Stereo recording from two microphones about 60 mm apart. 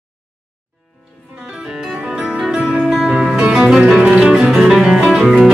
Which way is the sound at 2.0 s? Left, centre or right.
Centre.